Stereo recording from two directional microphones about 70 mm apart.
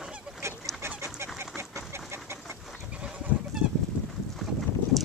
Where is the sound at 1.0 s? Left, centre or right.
Right.